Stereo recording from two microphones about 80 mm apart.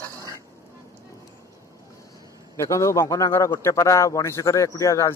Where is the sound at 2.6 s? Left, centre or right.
Left.